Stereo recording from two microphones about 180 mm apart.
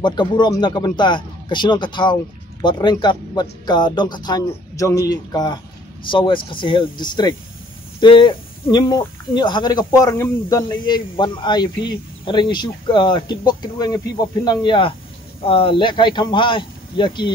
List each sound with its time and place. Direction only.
0.0 s speech: 25° left (ahead or behind)